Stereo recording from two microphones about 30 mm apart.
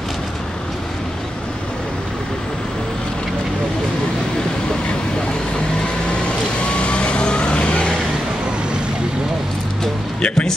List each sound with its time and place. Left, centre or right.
6.0 s vehicle: left
10.2 s music: left